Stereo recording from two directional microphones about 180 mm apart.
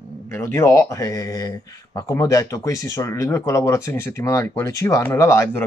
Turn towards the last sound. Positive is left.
turn(degrees=15)  # may be behind; listen again after turning